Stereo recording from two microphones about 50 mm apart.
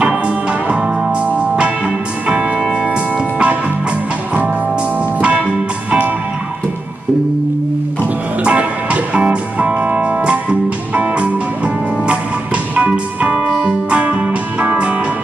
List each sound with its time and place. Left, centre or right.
0.0 s music: right
5.2 s music: right
8.5 s music: right